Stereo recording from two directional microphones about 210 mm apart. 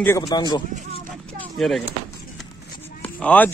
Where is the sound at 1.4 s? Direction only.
Centre (ahead or behind).